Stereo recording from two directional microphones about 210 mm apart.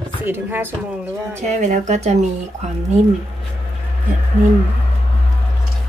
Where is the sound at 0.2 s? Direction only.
10° right (ahead or behind).